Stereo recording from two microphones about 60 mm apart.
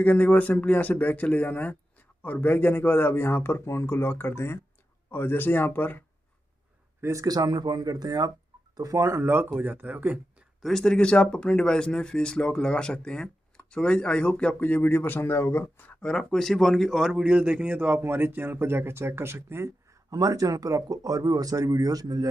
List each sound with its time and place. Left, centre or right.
0.0 s speech: left
7.1 s speech: right
8.7 s speech: right
10.6 s speech: centre
14.6 s speech: left
16.0 s speech: centre; by 18.0 s right
18.0 s speech: right
20.1 s speech: right